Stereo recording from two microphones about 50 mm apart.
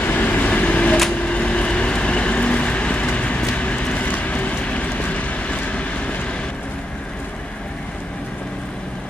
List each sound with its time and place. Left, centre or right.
0.0 s vehicle: left